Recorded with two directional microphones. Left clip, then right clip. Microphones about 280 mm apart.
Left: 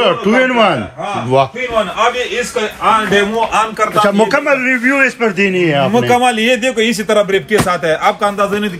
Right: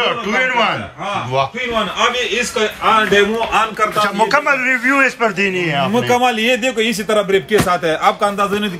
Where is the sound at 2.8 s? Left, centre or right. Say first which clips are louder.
Left 1 dB; left.